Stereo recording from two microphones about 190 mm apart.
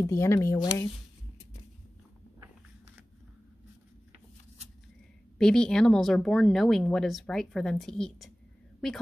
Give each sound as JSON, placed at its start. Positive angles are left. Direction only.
{"t": 0.0, "sound": "speech", "side_deg": 15}
{"t": 5.4, "sound": "speech", "side_deg": 5}